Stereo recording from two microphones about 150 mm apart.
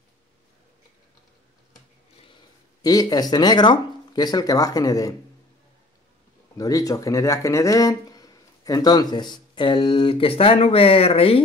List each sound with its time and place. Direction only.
2.8 s speech: 25° left (ahead or behind)
6.5 s speech: 25° left (ahead or behind); by 11.4 s 40° left (ahead or behind)